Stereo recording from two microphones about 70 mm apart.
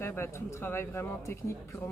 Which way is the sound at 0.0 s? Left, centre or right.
Left.